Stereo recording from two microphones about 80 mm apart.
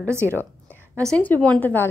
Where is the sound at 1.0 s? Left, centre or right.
Centre.